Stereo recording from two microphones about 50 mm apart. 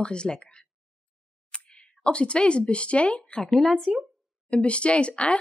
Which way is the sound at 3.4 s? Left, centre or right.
Centre.